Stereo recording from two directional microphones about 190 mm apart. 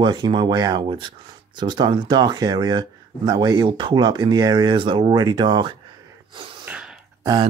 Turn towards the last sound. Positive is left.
turn(degrees=-20)  # may be behind; listen again after turning